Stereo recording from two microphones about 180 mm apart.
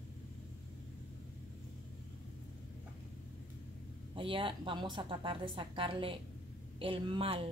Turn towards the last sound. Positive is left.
turn(degrees=-30)  # may be behind; listen again after turning